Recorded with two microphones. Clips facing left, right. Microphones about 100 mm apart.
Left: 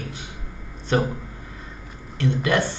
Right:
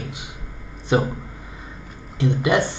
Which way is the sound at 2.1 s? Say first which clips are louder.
Right 2 dB; 15° right (ahead or behind).